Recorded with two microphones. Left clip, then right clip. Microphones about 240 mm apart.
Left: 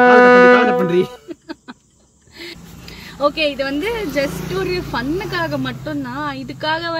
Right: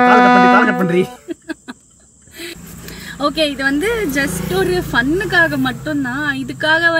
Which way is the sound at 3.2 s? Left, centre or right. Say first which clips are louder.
Even; centre.